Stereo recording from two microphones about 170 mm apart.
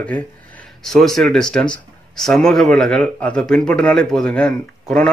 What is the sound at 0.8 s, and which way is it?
Speech, centre (ahead or behind).